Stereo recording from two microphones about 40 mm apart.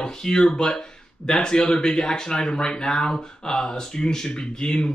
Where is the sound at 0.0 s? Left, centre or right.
Centre.